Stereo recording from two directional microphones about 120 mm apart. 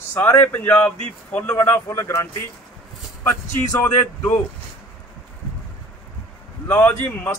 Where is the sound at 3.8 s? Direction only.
15° left (ahead or behind).